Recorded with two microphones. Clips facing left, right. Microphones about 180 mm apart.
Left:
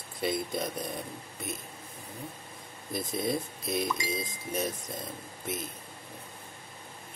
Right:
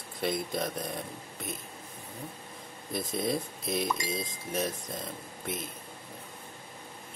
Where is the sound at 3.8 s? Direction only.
45° right (ahead or behind).